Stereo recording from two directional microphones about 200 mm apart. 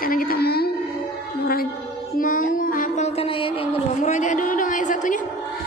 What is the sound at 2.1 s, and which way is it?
Music, 40° left (ahead or behind).